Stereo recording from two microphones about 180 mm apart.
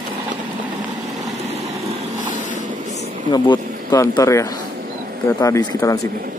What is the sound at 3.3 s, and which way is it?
Speech, 20° left (ahead or behind).